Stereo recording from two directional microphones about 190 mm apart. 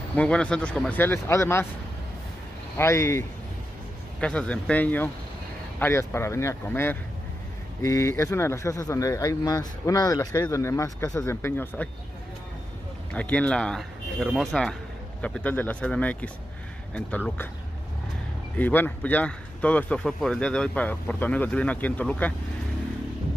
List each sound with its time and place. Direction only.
0.1 s speech: 5° left (ahead or behind)
2.8 s speech: 15° left (ahead or behind)
13.1 s speech: 5° left (ahead or behind)
18.6 s speech: 10° left (ahead or behind)